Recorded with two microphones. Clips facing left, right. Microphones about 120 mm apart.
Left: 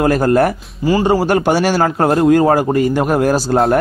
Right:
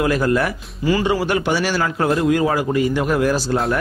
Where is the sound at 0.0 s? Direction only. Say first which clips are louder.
Left 5 dB; 45° left (ahead or behind).